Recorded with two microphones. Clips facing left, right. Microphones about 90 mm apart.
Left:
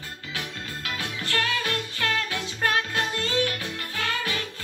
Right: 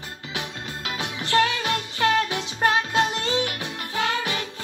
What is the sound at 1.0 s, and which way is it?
Music, 20° right (ahead or behind).